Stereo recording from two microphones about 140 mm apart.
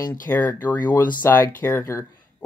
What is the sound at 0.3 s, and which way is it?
Speech, 15° left (ahead or behind).